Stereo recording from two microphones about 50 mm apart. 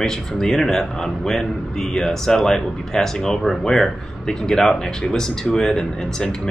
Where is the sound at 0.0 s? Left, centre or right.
Centre.